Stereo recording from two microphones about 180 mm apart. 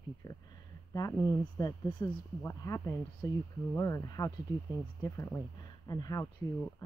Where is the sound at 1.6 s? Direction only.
25° left (ahead or behind).